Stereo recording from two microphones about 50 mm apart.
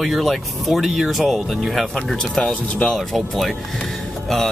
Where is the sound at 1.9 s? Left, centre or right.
Centre.